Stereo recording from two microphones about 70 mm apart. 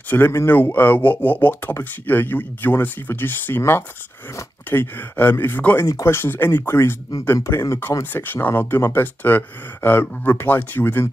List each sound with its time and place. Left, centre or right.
0.1 s speech: left
7.3 s speech: left